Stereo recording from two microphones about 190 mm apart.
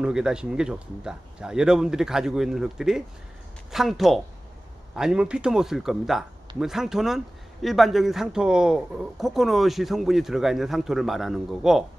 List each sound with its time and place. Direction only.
0.0 s speech: 5° right (ahead or behind)